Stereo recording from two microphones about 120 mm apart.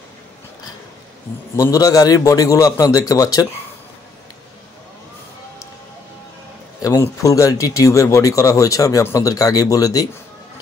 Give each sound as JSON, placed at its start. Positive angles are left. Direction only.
{"t": 1.6, "sound": "a man's voice", "side_deg": 30}
{"t": 6.8, "sound": "speech", "side_deg": 30}